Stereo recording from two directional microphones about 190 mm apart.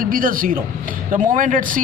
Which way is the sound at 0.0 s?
45° right (ahead or behind).